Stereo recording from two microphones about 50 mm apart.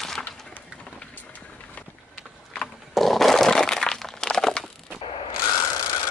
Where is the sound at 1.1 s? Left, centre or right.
Left.